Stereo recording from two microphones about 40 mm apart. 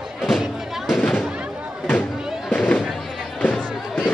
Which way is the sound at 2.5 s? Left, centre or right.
Left.